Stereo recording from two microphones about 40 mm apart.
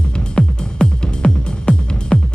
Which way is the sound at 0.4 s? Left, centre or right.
Centre.